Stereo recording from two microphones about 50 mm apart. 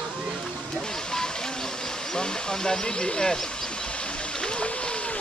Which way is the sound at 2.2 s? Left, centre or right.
Centre.